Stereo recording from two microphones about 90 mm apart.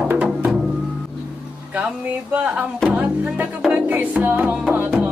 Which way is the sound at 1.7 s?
15° right (ahead or behind).